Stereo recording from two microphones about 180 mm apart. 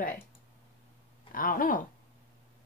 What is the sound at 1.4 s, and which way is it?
Speech, 50° left (ahead or behind).